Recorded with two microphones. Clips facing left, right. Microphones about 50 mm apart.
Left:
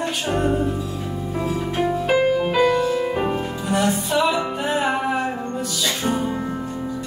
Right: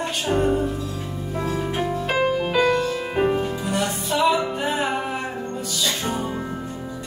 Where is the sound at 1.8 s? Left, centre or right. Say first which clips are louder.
Left 5 dB; centre.